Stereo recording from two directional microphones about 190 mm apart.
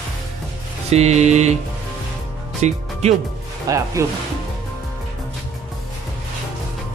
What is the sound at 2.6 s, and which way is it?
Music, 35° right (ahead or behind).